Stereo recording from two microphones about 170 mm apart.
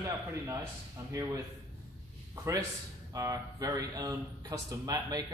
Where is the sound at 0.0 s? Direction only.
15° right (ahead or behind).